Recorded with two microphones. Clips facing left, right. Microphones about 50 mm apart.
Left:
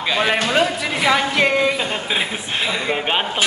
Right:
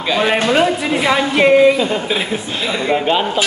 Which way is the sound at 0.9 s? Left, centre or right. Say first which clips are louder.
Even; centre.